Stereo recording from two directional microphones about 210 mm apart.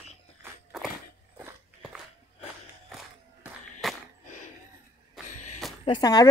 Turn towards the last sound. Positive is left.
turn(degrees=20)  # may be behind; listen again after turning